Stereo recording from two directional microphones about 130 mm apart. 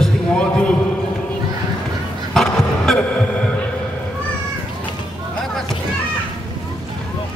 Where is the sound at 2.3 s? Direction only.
5° left (ahead or behind).